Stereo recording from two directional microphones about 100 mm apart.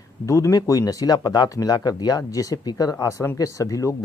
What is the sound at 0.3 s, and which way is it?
Speech, 35° left (ahead or behind).